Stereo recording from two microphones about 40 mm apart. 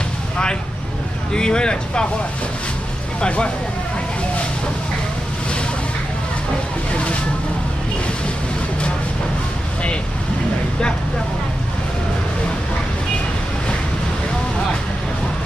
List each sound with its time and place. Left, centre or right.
1.3 s speech: left
3.2 s speech: left